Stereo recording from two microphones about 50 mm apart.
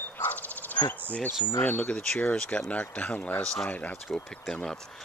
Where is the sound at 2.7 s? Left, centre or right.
Left.